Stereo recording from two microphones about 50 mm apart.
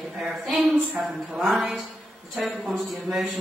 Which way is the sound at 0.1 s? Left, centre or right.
Centre.